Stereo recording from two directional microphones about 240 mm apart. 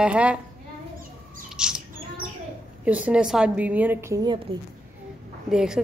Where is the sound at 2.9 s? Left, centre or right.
Centre.